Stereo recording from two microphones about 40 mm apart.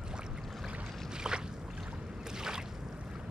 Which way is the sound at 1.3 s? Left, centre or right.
Centre.